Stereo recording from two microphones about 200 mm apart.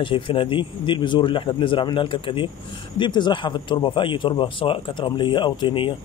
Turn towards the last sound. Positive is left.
turn(degrees=25)  # may be behind; listen again after turning